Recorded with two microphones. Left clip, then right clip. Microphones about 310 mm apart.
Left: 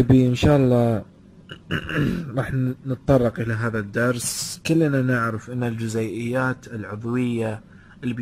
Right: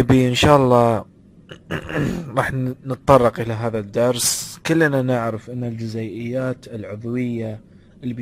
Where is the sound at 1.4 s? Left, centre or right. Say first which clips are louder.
Even; centre.